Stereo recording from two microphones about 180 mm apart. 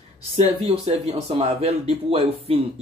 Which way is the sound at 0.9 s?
35° right (ahead or behind).